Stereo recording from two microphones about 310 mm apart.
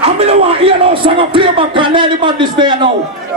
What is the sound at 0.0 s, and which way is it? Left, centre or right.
Speech, centre.